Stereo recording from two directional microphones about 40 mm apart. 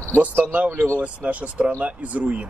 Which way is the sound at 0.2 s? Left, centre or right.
Right.